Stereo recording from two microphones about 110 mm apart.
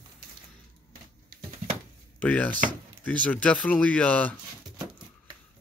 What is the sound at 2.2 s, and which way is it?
Speech, 15° left (ahead or behind).